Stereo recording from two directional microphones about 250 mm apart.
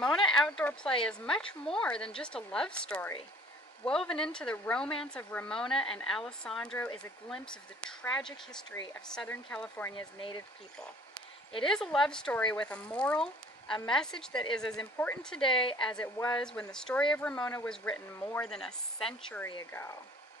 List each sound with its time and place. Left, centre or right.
0.0 s speech: centre
11.6 s speech: centre
15.4 s a woman's voice: left
15.8 s speech: centre